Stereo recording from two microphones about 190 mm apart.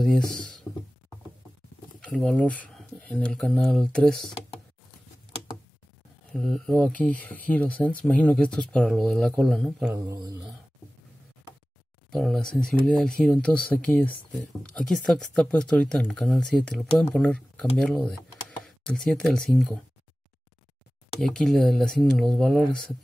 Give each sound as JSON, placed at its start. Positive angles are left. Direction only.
{"t": 0.0, "sound": "speech", "side_deg": 0}
{"t": 2.0, "sound": "speech", "side_deg": 5}
{"t": 6.3, "sound": "speech", "side_deg": 5}
{"t": 9.9, "sound": "speech", "side_deg": -20}
{"t": 12.1, "sound": "speech", "side_deg": 0}
{"t": 21.2, "sound": "speech", "side_deg": 5}